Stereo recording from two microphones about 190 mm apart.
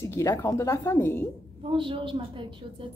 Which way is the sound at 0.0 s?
15° left (ahead or behind).